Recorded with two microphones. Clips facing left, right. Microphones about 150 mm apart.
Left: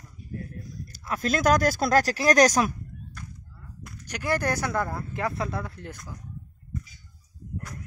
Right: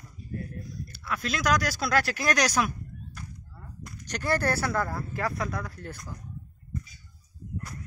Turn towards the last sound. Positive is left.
turn(degrees=20)  # may be behind; listen again after turning